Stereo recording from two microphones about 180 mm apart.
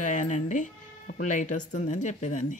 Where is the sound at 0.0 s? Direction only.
45° left (ahead or behind).